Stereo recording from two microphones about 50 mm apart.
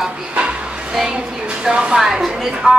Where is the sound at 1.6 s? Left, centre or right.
Centre.